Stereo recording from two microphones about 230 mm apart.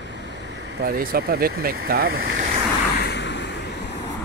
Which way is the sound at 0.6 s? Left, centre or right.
Right.